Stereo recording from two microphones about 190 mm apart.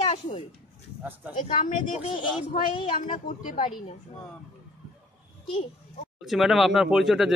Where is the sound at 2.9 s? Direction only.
40° left (ahead or behind).